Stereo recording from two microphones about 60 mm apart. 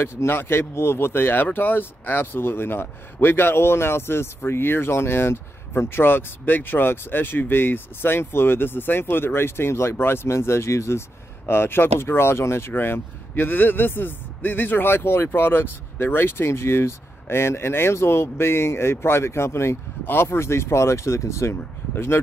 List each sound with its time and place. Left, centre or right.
0.0 s speech: left